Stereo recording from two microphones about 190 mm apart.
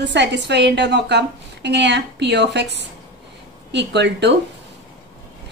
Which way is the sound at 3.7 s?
65° right (ahead or behind).